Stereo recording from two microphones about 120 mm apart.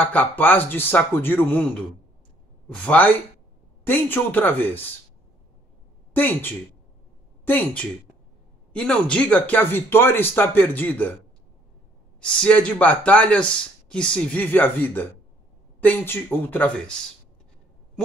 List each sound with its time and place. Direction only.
0.0 s speech: 15° left (ahead or behind)
6.1 s speech: 15° left (ahead or behind)
12.2 s speech: 10° left (ahead or behind)